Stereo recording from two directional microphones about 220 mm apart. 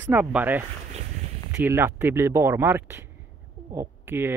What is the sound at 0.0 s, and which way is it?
Speech, 10° right (ahead or behind).